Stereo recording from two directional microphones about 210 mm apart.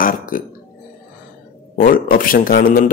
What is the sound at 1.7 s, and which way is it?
Speech, 40° left (ahead or behind).